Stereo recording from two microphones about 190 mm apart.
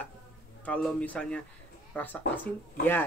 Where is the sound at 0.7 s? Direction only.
5° left (ahead or behind).